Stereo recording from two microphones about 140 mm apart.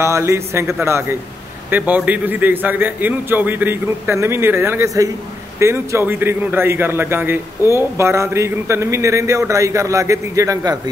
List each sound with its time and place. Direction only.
0.0 s a man's voice: 20° right (ahead or behind)